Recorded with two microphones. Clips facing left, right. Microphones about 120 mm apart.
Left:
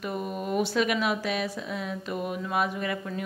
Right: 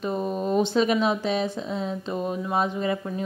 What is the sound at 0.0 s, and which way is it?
Speech, 30° right (ahead or behind).